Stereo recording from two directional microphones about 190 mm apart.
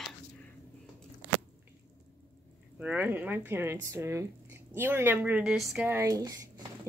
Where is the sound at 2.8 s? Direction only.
10° right (ahead or behind).